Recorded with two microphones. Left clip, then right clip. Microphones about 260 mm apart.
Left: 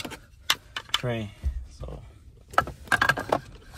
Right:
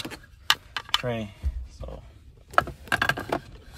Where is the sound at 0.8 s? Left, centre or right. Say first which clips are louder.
Right 2 dB; right.